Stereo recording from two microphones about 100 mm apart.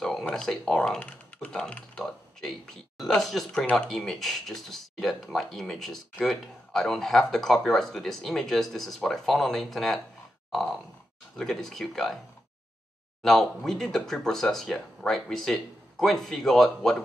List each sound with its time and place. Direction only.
0.0 s speech: 5° left (ahead or behind)
10.5 s grunt: centre (ahead or behind)
11.3 s speech: 5° left (ahead or behind)
13.2 s speech: 5° left (ahead or behind)